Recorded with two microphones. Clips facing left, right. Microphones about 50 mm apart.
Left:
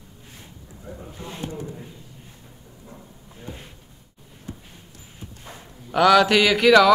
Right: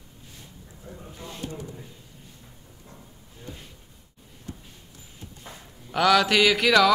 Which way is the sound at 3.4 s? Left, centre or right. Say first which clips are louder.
Left 3 dB; left.